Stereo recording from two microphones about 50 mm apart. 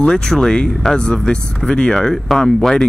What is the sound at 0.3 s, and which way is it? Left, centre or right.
Speech, centre.